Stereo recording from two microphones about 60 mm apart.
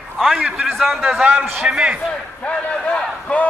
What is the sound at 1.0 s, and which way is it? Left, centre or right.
A man's voice, centre.